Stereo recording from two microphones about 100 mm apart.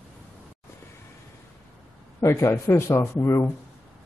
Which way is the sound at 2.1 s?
25° left (ahead or behind).